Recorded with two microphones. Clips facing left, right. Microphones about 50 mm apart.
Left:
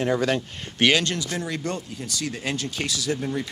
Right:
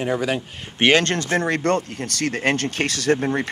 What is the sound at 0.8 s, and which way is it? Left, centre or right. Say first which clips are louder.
Speech: right 4 dB; right.